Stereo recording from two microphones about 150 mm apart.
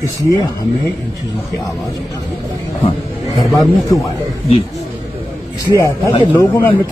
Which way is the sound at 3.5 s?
20° left (ahead or behind).